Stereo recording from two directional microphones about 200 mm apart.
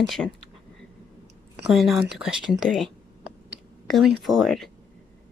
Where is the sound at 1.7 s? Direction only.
Centre (ahead or behind).